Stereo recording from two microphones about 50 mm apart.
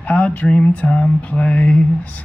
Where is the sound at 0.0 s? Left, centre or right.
Left.